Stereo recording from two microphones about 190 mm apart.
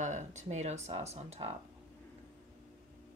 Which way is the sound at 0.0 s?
40° right (ahead or behind).